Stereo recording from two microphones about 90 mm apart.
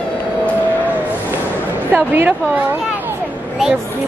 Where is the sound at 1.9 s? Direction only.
20° right (ahead or behind).